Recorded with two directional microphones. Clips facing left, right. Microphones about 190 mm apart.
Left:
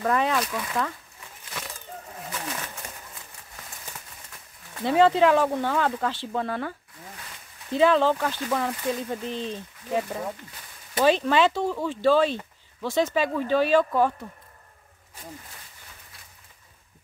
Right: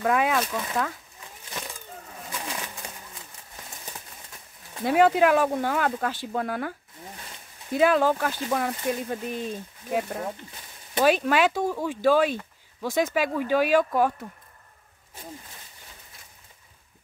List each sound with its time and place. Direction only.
0.0 s speech: 5° right (ahead or behind)
0.4 s speech: 25° right (ahead or behind)
4.7 s speech: 10° right (ahead or behind)
7.7 s speech: 10° right (ahead or behind)